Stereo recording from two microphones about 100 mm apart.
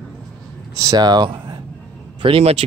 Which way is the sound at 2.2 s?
75° right (ahead or behind).